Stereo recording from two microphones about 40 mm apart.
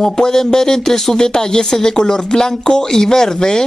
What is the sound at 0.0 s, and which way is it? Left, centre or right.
Speech, centre.